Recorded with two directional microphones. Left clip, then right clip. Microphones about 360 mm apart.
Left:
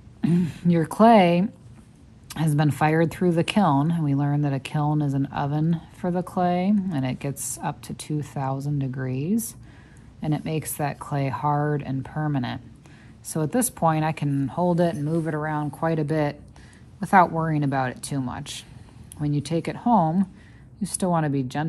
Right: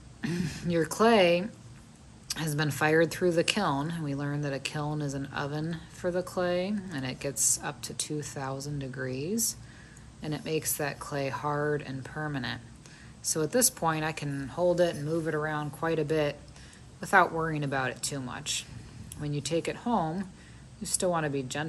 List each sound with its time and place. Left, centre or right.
0.2 s speech: centre